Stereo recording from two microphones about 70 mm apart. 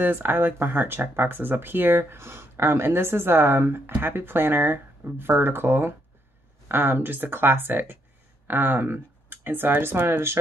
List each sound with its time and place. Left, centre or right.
0.0 s speech: right